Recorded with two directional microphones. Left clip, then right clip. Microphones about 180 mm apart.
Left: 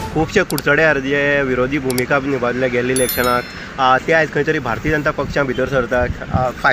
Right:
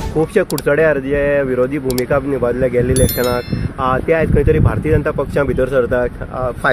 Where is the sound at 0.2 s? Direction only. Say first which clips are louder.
Right 2 dB; 45° right (ahead or behind).